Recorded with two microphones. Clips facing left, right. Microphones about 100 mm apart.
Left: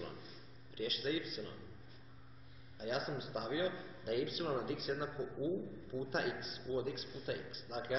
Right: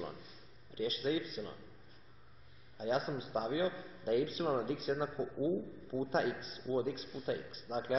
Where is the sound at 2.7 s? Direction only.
30° right (ahead or behind).